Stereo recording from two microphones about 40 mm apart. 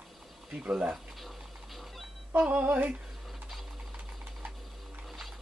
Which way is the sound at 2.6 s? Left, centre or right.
Right.